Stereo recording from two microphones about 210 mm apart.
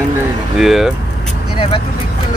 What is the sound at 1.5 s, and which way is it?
Speech, 25° left (ahead or behind).